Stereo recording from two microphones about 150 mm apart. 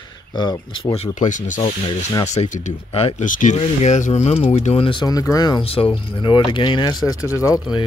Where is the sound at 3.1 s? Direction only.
60° left (ahead or behind); by 5.7 s 25° left (ahead or behind).